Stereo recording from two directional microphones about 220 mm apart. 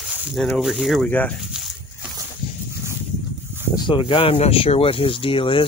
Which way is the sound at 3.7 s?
20° left (ahead or behind).